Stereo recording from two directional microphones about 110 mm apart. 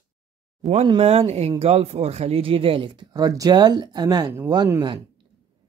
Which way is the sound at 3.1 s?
30° right (ahead or behind).